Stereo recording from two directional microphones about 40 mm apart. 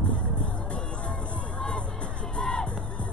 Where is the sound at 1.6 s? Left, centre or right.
Left.